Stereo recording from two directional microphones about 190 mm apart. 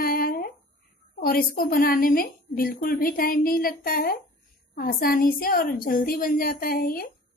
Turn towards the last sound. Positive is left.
turn(degrees=50)  # may be behind; listen again after turning